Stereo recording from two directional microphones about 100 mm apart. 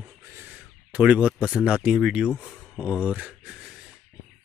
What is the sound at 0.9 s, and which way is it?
Speech, 10° right (ahead or behind).